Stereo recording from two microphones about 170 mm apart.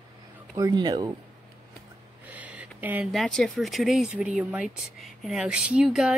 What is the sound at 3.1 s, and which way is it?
Speech, centre (ahead or behind).